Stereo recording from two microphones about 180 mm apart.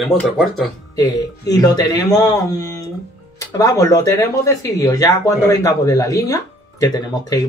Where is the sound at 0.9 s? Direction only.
20° left (ahead or behind).